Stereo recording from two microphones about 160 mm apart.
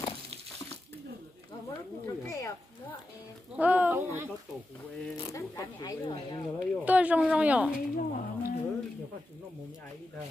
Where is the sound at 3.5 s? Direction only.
10° right (ahead or behind).